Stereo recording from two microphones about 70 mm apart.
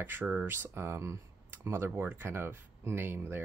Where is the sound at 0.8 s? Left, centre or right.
Right.